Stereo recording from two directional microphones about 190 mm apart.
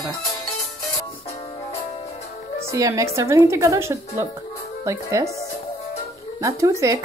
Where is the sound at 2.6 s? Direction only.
15° right (ahead or behind).